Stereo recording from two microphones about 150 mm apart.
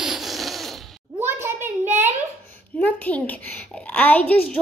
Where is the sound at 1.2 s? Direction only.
15° right (ahead or behind).